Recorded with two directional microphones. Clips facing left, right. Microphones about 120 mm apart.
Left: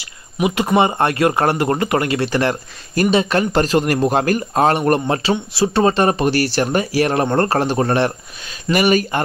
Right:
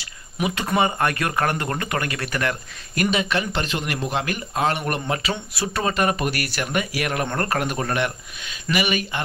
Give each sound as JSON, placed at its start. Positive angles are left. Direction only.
{"t": 0.4, "sound": "speech", "side_deg": 25}